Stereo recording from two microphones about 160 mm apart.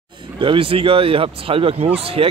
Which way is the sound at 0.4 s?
35° right (ahead or behind).